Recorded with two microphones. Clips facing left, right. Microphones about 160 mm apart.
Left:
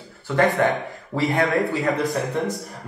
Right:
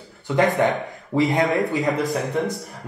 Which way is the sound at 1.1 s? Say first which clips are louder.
Right 2 dB; 20° right (ahead or behind).